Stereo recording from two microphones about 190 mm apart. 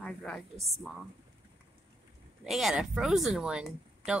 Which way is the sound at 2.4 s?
Centre (ahead or behind).